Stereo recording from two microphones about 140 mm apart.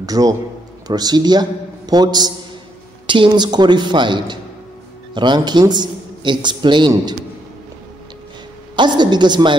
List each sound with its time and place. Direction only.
0.0 s a man's voice: 25° right (ahead or behind)
8.7 s speech: 30° right (ahead or behind)